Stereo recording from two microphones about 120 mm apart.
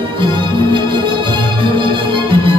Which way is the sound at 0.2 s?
40° right (ahead or behind).